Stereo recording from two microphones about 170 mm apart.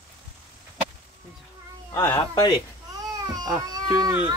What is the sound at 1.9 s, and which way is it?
Speech, 15° left (ahead or behind).